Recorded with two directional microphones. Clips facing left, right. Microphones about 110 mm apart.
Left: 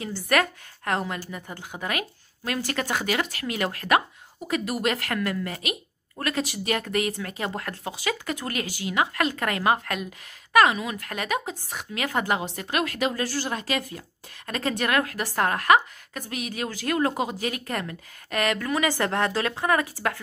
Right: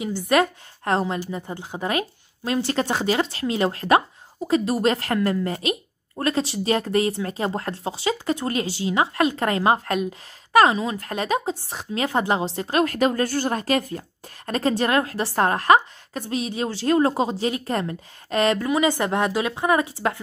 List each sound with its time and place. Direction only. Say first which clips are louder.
0.0 s a woman's voice: right 4 dB; 20° right (ahead or behind)